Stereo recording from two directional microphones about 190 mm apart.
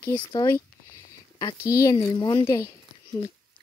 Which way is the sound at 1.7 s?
15° left (ahead or behind).